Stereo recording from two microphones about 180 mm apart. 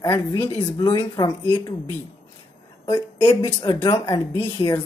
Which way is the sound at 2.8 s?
20° left (ahead or behind).